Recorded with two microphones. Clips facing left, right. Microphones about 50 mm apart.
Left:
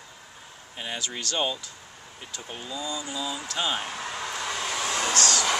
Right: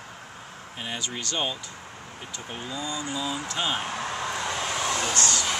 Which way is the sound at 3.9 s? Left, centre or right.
Right.